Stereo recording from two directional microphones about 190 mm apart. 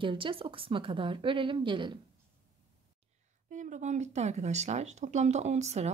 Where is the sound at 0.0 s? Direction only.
25° right (ahead or behind).